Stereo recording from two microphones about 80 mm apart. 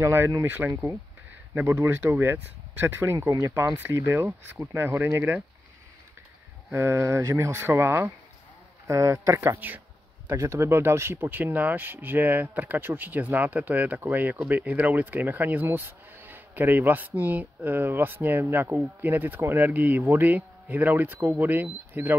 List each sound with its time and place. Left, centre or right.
0.0 s speech: right
3.3 s speech: right
3.9 s speech: right
6.7 s speech: right